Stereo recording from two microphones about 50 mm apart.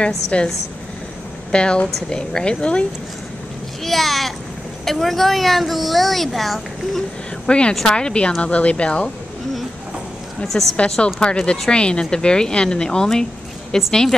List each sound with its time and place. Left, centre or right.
0.0 s speech: centre
1.5 s speech: centre
3.8 s a sound: centre
4.8 s a woman's voice: centre
7.4 s speech: centre
10.5 s speech: left; by 14.1 s centre